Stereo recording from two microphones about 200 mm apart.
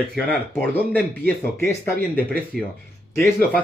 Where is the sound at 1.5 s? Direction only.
10° left (ahead or behind).